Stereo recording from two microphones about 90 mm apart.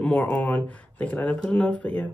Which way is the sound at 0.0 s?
10° left (ahead or behind).